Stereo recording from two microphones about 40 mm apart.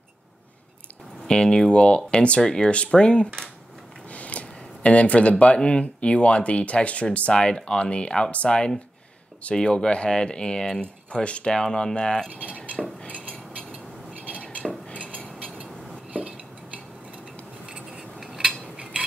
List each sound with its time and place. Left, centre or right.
1.2 s speech: left
4.1 s a sound: left
5.6 s speech: left
7.3 s speech: left
11.1 s speech: left
12.8 s cutlery: centre
13.1 s cutlery: right
14.6 s cutlery: centre
15.0 s cutlery: right
15.3 s a sound: right
16.1 s dishes: right
17.6 s a sound: right
18.2 s cutlery: centre
18.5 s a sound: right